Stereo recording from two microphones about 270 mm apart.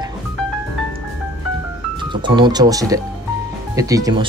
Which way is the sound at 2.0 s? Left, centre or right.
Centre.